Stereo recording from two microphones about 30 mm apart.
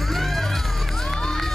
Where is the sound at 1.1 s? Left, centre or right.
Centre.